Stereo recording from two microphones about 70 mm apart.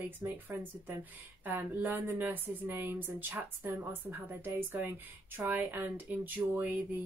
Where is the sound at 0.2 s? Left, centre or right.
Right.